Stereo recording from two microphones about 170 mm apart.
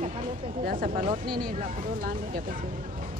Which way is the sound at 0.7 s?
55° right (ahead or behind).